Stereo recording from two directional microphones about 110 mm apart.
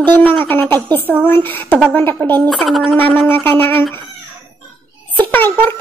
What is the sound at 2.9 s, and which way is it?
Speech, 15° left (ahead or behind).